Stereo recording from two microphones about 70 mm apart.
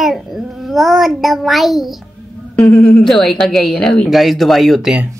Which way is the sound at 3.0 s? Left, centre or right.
Centre.